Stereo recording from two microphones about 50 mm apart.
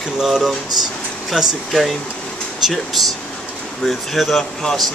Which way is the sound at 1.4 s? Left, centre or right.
Centre.